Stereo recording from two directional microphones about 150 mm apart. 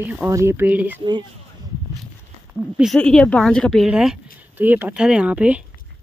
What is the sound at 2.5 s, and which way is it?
Speech, 5° right (ahead or behind).